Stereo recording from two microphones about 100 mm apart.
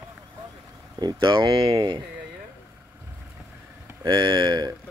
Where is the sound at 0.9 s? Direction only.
45° right (ahead or behind).